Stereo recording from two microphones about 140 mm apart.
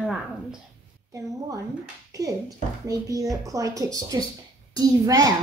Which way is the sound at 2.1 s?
25° right (ahead or behind).